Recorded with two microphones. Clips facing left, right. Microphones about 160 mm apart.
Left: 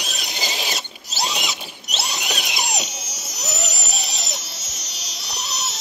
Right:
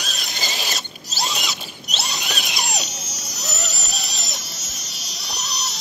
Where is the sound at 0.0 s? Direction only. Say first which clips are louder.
Left 1 dB; 15° left (ahead or behind).